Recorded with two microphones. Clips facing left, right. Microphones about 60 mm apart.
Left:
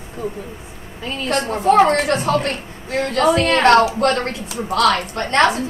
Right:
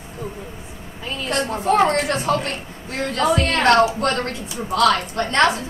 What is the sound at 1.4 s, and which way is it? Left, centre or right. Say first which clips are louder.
A woman's voice: left 4 dB; left.